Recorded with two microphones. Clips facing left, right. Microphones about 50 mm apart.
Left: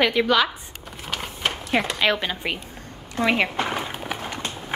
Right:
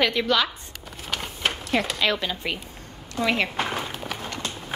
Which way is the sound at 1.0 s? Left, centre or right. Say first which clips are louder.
Even; centre.